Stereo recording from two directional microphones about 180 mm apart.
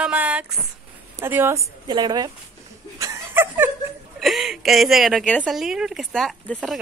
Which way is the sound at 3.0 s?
15° right (ahead or behind).